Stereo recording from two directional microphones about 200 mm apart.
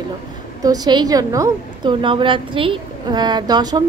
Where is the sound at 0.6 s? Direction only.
20° right (ahead or behind).